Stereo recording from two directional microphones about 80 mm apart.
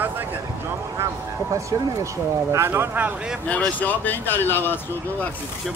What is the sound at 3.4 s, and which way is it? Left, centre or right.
Speech, centre.